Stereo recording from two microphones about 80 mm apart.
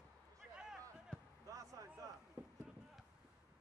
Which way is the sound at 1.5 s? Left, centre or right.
Right.